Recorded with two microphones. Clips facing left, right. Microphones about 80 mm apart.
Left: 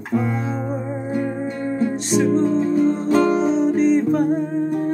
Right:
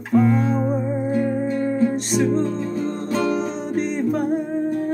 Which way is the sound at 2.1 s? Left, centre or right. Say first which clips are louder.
Left 6 dB; centre.